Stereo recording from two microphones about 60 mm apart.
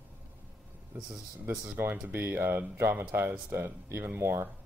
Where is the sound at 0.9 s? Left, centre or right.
Right.